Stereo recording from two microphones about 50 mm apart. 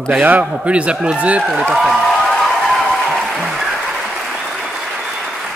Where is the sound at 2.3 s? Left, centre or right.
Centre.